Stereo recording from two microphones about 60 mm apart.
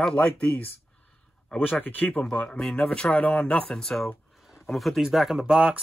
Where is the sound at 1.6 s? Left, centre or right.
Left.